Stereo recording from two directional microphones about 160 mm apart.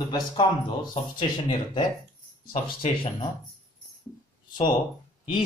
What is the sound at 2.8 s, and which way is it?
Speech, 35° left (ahead or behind).